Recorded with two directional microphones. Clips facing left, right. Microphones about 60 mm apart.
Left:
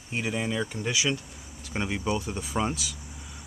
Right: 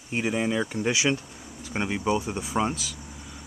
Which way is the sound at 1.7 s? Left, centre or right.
Centre.